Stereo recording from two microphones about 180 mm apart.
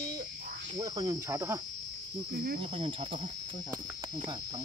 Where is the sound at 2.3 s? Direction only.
55° right (ahead or behind).